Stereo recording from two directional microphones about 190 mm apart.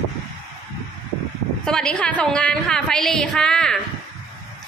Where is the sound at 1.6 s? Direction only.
5° left (ahead or behind).